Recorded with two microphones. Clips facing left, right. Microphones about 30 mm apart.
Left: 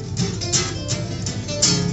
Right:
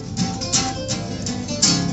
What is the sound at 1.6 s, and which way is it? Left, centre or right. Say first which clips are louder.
Music: right 1 dB; right.